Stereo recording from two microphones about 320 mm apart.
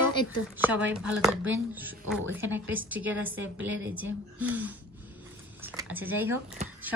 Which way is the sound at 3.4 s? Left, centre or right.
Right.